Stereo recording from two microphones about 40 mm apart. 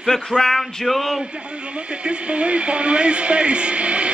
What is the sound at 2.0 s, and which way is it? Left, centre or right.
A man's voice, right.